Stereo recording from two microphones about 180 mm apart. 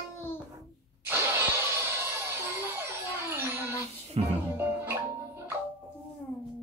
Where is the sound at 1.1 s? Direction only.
10° right (ahead or behind).